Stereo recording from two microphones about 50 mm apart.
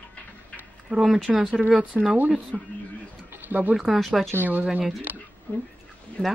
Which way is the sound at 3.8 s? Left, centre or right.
Centre.